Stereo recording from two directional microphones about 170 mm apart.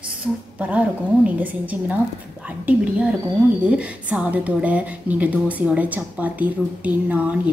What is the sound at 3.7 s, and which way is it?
A woman's voice, 5° right (ahead or behind).